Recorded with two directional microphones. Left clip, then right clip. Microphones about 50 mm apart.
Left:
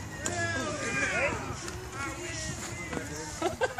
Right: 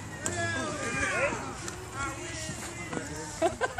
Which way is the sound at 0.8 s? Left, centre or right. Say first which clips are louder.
Even; centre.